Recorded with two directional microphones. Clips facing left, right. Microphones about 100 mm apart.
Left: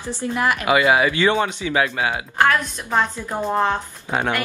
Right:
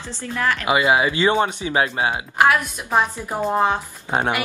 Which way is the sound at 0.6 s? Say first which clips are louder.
Left 1 dB; 25° right (ahead or behind).